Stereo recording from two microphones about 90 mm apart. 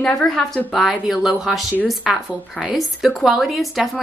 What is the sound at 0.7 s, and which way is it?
A woman's voice, 5° right (ahead or behind).